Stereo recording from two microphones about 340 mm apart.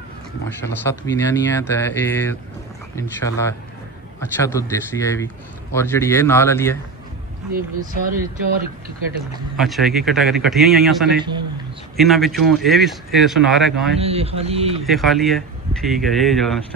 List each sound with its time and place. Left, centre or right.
0.8 s speech: centre
7.5 s speech: right
9.6 s a man's voice: centre
13.9 s a man's voice: centre
14.9 s a man's voice: centre